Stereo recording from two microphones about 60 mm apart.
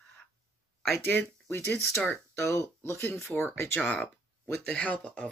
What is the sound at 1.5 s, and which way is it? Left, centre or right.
Speech, left.